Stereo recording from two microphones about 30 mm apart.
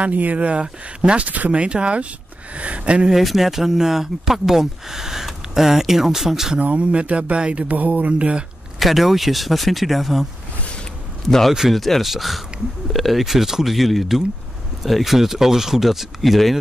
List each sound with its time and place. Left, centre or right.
0.1 s mantra: right
0.4 s speech: right
1.2 s mantra: right
1.5 s speech: right
3.2 s speech: centre
6.6 s speech: right
7.6 s mantra: right
8.1 s speech: right
8.7 s speech: centre
11.2 s a man's voice: centre
13.2 s speech: centre